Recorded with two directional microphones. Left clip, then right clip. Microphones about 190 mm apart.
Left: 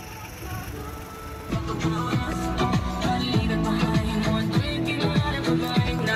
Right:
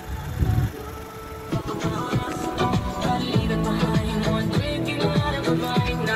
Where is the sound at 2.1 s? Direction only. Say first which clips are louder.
Right 1 dB; 50° right (ahead or behind).